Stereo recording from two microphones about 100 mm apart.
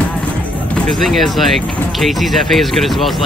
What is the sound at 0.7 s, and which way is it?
Speech, 5° left (ahead or behind).